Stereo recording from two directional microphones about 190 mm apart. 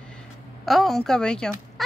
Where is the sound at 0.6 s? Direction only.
Centre (ahead or behind).